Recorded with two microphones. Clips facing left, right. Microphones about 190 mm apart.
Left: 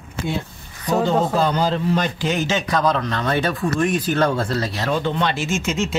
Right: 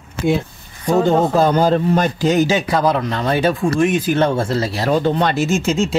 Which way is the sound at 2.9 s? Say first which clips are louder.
Right 3 dB; 15° right (ahead or behind).